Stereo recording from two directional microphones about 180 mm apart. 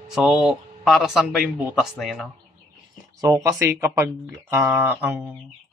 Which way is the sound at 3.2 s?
15° right (ahead or behind).